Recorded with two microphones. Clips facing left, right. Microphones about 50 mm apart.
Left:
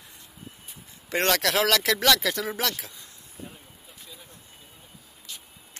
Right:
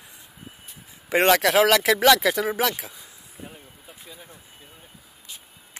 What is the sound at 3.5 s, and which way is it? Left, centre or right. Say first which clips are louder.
Vehicle: right 3 dB; centre.